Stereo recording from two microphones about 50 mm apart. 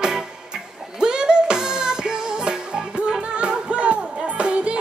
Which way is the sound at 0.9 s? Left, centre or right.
Centre.